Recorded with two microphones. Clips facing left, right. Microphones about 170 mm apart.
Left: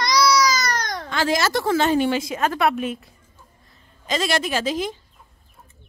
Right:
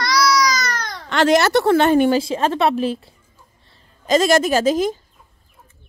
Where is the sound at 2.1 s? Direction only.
30° right (ahead or behind).